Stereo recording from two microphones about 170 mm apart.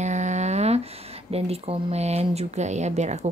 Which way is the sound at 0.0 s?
45° right (ahead or behind).